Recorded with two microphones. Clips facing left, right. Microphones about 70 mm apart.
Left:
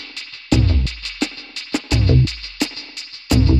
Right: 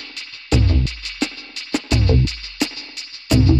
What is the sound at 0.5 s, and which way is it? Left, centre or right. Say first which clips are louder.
Music: even; centre.